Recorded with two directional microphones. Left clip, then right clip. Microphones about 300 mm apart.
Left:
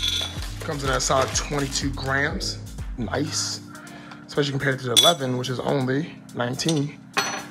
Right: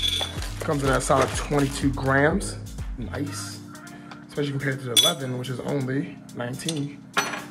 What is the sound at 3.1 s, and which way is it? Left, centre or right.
Speech, centre.